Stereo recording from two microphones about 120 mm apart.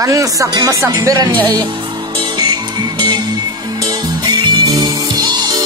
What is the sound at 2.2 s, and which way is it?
Music, 35° right (ahead or behind).